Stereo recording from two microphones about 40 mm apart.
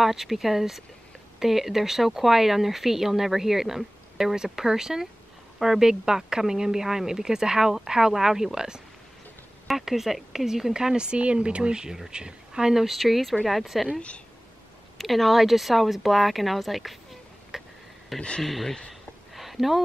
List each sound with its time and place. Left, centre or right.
0.0 s speech: centre
12.8 s speech: centre
15.0 s speech: centre
19.3 s a sound: centre